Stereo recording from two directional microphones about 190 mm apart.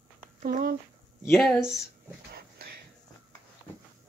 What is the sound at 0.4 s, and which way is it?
Speech, 50° right (ahead or behind).